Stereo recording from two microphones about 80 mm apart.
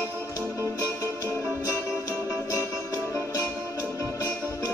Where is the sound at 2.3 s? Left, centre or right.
Left.